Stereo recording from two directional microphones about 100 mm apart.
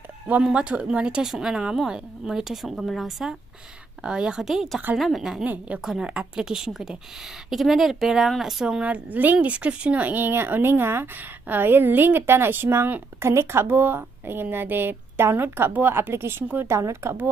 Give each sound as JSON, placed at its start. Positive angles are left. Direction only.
{"t": 0.3, "sound": "a woman's voice", "side_deg": -10}